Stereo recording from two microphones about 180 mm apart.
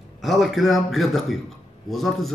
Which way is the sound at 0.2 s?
Centre (ahead or behind).